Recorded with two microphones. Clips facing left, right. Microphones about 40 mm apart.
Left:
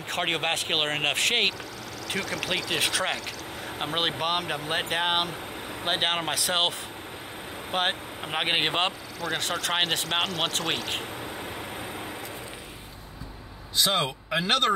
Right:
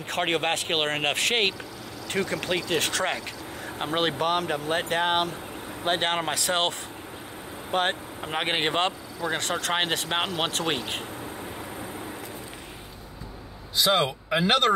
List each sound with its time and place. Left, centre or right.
0.1 s speech: centre
2.1 s speech: centre
2.4 s speech: centre
4.6 s speech: left
6.0 s speech: centre
7.7 s speech: centre
9.3 s speech: centre
10.0 s speech: centre
11.0 s vehicle: left
13.7 s speech: centre